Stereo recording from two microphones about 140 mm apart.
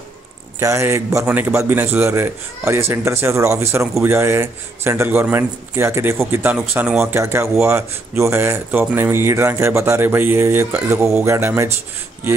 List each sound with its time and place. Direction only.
0.6 s a man's voice: 20° right (ahead or behind)